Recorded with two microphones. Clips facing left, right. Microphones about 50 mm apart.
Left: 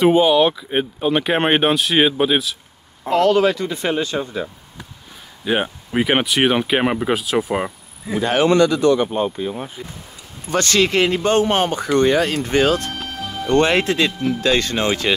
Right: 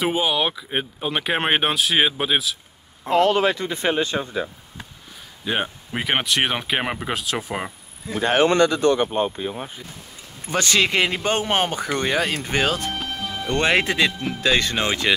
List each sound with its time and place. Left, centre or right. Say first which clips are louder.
0.0 s speech: left 8 dB; centre
3.2 s speech: left 3 dB; right
5.4 s speech: left 4 dB; centre
8.2 s speech: left 2 dB; right
10.5 s speech: left 3 dB; centre